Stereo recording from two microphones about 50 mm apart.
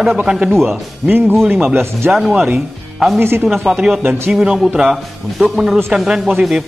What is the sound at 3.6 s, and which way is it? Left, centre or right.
A man's voice, centre.